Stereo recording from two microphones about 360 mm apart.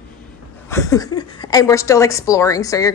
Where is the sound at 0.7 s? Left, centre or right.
Centre.